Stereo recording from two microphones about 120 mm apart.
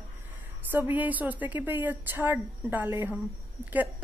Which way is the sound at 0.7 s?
15° right (ahead or behind).